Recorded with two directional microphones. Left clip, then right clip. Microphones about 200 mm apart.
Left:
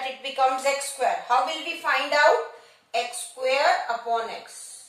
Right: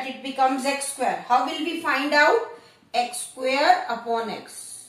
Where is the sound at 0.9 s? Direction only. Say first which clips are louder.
Right 3 dB; 20° left (ahead or behind).